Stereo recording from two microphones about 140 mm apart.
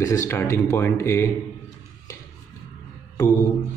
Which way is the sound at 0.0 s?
25° left (ahead or behind).